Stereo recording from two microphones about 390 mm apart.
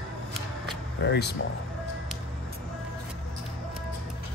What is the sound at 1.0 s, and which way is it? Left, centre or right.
Speech, left.